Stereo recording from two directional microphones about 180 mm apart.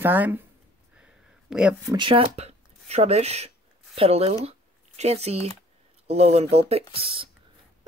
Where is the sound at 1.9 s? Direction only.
30° right (ahead or behind).